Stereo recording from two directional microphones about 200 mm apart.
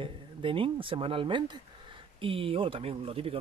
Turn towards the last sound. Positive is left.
turn(degrees=-30)  # may be behind; listen again after turning